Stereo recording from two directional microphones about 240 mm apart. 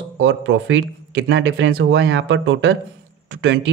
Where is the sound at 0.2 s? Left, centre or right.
Right.